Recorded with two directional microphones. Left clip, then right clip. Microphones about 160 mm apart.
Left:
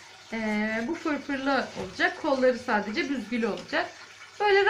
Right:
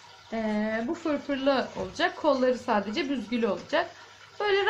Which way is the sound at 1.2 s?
15° right (ahead or behind).